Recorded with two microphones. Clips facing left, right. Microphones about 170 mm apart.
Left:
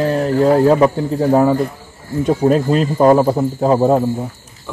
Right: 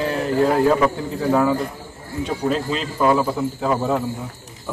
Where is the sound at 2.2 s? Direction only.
50° left (ahead or behind).